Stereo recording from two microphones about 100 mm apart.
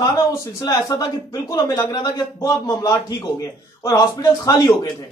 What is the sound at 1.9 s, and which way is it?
A man's voice, 40° left (ahead or behind).